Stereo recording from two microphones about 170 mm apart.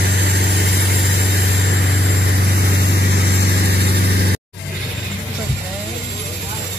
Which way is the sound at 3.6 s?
70° right (ahead or behind).